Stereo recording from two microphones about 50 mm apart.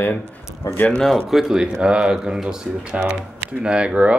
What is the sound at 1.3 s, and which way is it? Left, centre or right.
Speech, centre.